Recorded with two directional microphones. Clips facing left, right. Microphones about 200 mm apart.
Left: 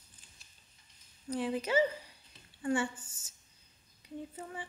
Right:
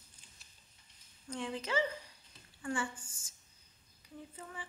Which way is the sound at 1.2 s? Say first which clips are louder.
Left 6 dB; 20° left (ahead or behind).